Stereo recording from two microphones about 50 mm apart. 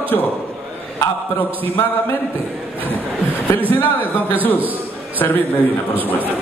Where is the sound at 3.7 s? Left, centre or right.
Left.